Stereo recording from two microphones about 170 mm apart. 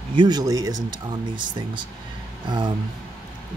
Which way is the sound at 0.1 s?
25° right (ahead or behind).